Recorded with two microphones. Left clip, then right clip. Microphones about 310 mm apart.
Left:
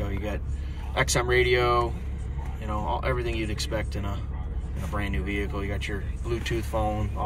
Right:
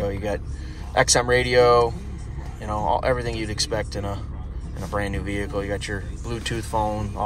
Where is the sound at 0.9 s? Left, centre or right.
Right.